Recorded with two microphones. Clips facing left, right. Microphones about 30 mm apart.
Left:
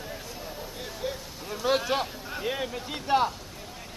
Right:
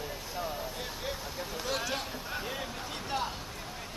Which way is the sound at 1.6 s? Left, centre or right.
Left.